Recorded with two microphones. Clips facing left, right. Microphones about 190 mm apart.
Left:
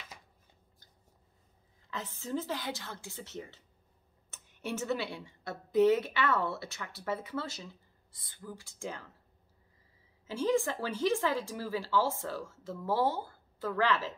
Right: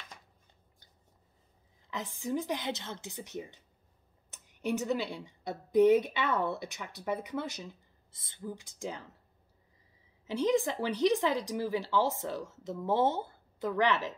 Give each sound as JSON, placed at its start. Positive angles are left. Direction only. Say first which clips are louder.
{"t": 1.9, "sound": "a woman's voice", "louder": "right 2 dB", "side_deg": -15}
{"t": 10.2, "sound": "a woman's voice", "louder": "right 1 dB", "side_deg": -20}